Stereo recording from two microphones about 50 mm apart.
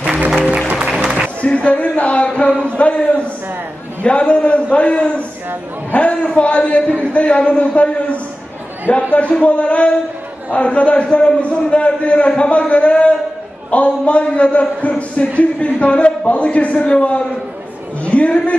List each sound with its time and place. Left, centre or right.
0.0 s music: right
1.4 s a man's voice: left